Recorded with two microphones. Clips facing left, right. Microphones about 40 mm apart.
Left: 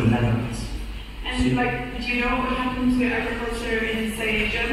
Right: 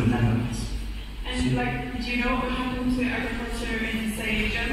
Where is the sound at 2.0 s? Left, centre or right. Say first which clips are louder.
Left 3 dB; left.